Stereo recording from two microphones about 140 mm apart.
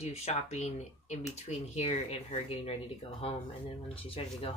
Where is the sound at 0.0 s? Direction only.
50° left (ahead or behind).